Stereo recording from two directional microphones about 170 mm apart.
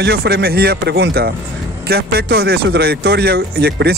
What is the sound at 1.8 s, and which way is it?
Speech, 65° right (ahead or behind).